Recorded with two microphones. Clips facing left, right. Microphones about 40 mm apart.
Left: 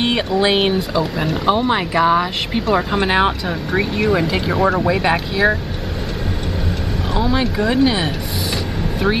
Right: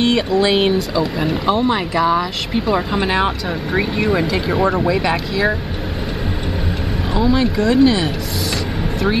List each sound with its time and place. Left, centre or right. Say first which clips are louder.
0.0 s speech: right 1 dB; centre
3.4 s speech: even; centre
4.7 s speech: even; centre
5.0 s speech: left 2 dB; centre
7.2 s speech: right 2 dB; centre